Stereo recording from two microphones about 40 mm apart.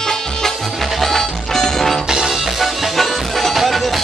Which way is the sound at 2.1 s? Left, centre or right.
Centre.